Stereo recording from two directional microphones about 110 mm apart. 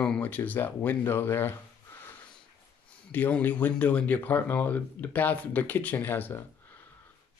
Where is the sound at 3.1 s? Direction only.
15° left (ahead or behind).